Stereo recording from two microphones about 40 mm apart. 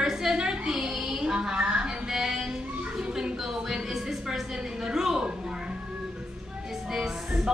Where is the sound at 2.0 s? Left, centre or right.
Centre.